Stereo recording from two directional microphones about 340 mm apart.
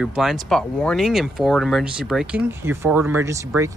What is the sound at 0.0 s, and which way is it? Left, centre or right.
Speech, centre.